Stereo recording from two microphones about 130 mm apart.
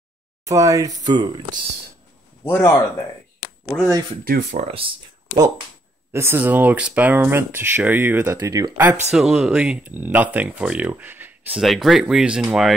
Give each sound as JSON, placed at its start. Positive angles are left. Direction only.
{"t": 0.5, "sound": "speech", "side_deg": -25}
{"t": 2.4, "sound": "a man's voice", "side_deg": 20}
{"t": 4.2, "sound": "speech", "side_deg": -75}
{"t": 4.6, "sound": "speech", "side_deg": -45}
{"t": 6.1, "sound": "speech", "side_deg": -15}
{"t": 8.4, "sound": "speech", "side_deg": -25}
{"t": 8.7, "sound": "speech", "side_deg": -15}
{"t": 9.1, "sound": "speech", "side_deg": -5}
{"t": 11.6, "sound": "speech", "side_deg": 0}